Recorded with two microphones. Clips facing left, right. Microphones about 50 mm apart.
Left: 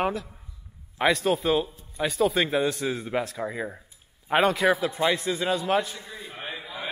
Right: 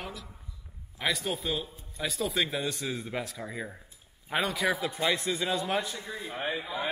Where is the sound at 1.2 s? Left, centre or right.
Centre.